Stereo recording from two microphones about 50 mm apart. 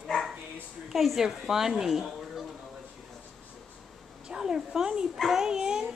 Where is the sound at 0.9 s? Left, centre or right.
Centre.